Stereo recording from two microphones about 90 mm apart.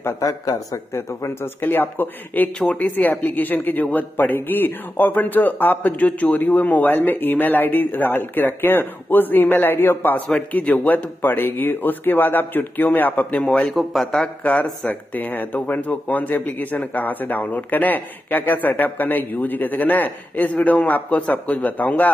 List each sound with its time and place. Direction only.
0.0 s speech: 40° left (ahead or behind); by 14.3 s 5° left (ahead or behind)
14.4 s speech: 15° left (ahead or behind)